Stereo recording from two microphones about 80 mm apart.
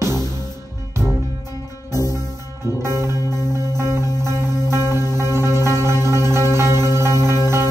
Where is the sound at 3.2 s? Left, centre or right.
Left.